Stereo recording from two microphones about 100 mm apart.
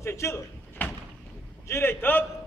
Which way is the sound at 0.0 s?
30° left (ahead or behind).